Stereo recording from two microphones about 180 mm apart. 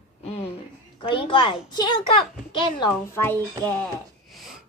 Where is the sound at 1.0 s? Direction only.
30° left (ahead or behind).